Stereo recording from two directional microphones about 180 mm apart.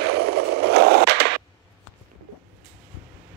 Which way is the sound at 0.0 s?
65° right (ahead or behind).